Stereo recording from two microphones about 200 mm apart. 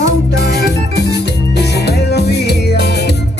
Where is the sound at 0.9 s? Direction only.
55° left (ahead or behind).